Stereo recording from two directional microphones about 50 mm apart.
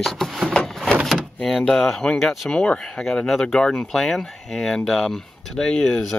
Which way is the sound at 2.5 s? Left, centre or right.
Centre.